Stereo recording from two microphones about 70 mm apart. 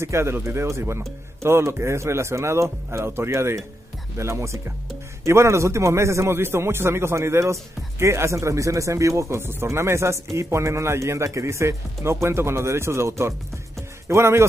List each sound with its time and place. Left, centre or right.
0.0 s a man's voice: right